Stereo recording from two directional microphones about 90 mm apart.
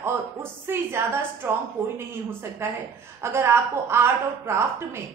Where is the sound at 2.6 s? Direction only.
30° right (ahead or behind).